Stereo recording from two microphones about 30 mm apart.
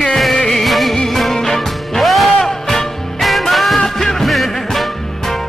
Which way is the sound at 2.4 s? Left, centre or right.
Centre.